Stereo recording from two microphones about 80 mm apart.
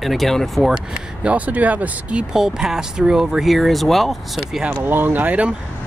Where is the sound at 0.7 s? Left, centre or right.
Centre.